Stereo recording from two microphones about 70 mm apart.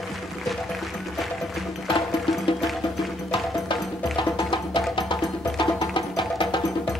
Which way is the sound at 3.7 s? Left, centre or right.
Left.